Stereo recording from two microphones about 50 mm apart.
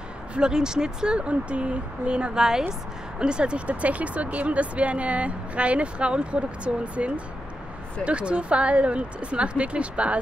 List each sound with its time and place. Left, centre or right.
0.4 s speech: centre